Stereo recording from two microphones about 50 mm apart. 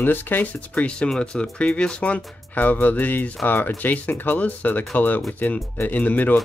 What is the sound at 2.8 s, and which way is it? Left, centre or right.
Speech, left.